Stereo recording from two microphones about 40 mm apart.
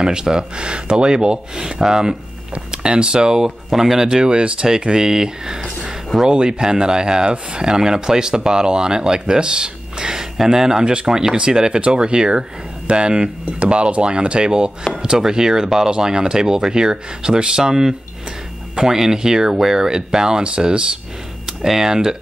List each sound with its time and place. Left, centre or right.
0.0 s speech: centre
21.5 s speech: centre